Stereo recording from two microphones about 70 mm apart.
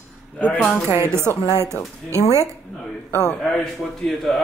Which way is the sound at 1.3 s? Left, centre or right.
Left.